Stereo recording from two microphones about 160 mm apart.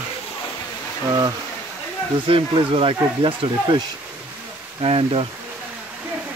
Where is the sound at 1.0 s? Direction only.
25° right (ahead or behind).